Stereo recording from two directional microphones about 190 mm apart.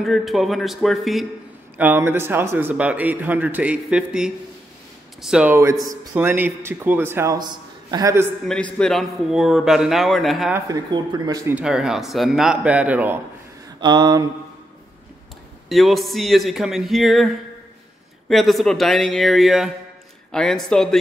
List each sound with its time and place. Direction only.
0.0 s a man's voice: centre (ahead or behind)
1.8 s speech: 10° right (ahead or behind)
8.7 s a man's voice: centre (ahead or behind)
10.5 s speech: 20° right (ahead or behind)
11.5 s a man's voice: 5° right (ahead or behind)
13.7 s speech: 20° right (ahead or behind)
15.7 s a man's voice: centre (ahead or behind)
18.3 s a man's voice: centre (ahead or behind)